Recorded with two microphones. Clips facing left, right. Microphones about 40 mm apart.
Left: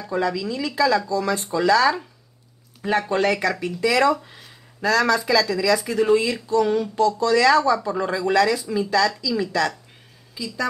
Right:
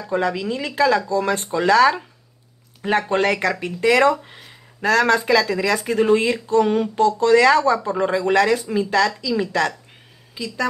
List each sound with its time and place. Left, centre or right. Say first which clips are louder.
0.1 s speech: right 2 dB; right
4.8 s speech: right 2 dB; right